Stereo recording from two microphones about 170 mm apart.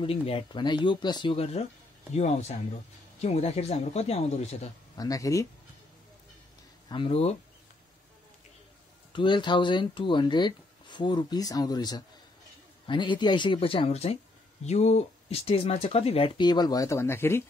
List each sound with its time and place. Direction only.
0.0 s speech: 35° left (ahead or behind)
4.9 s speech: 20° left (ahead or behind)
6.9 s speech: 30° left (ahead or behind)
9.1 s speech: 30° left (ahead or behind)